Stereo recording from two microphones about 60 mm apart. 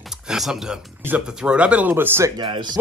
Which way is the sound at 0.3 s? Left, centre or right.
Centre.